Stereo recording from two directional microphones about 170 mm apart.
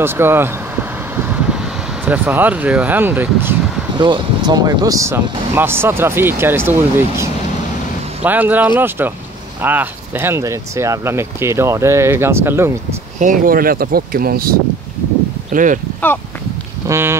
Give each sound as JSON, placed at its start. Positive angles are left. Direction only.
{"t": 0.0, "sound": "speech", "side_deg": -15}
{"t": 2.0, "sound": "speech", "side_deg": -10}
{"t": 3.9, "sound": "speech", "side_deg": -25}
{"t": 13.2, "sound": "speech", "side_deg": -55}
{"t": 16.8, "sound": "a sound", "side_deg": -15}